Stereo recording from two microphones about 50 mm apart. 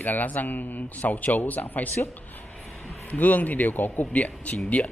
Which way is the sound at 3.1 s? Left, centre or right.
Left.